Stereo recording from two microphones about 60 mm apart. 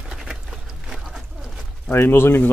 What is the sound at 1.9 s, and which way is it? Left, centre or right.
Pigeon, left.